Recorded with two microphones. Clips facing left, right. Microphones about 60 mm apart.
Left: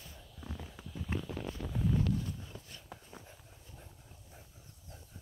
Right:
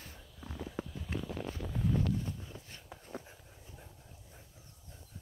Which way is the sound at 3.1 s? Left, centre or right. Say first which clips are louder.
Right 12 dB; right.